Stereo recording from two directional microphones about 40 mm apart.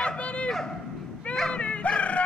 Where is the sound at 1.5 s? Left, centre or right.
Left.